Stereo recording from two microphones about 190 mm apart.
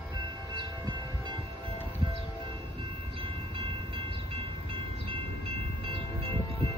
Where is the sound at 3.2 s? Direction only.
30° right (ahead or behind).